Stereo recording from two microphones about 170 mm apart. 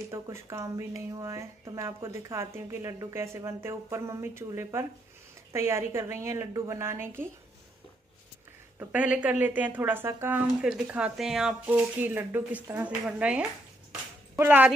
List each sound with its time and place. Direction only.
0.1 s speech: 15° right (ahead or behind)
8.7 s speech: 5° right (ahead or behind)